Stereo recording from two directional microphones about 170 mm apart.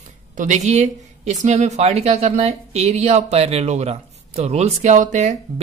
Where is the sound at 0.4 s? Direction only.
45° right (ahead or behind).